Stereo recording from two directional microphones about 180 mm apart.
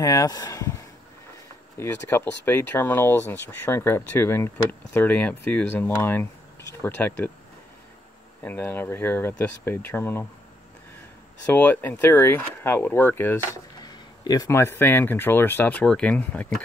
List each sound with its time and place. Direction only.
0.0 s speech: 20° left (ahead or behind)
8.4 s speech: 10° left (ahead or behind)
11.4 s speech: 10° left (ahead or behind)
13.7 s speech: 20° left (ahead or behind); by 16.6 s 5° left (ahead or behind)